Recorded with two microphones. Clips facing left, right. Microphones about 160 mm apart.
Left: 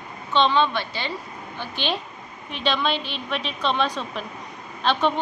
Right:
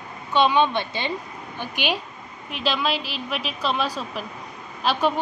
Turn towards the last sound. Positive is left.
turn(degrees=-5)  # may be behind; listen again after turning